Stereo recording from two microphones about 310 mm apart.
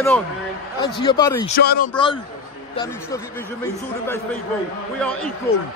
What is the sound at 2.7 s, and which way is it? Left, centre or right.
Speech, centre.